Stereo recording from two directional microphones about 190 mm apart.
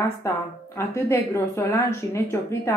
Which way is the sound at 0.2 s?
15° left (ahead or behind).